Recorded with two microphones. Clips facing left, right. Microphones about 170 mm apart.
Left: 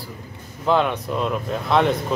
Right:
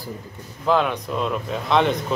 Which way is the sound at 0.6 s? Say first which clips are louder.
Left 1 dB; centre (ahead or behind).